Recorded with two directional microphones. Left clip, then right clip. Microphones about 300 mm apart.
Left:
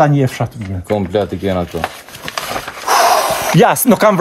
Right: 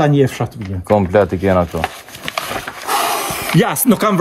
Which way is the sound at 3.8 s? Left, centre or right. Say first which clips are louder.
Left 4 dB; centre.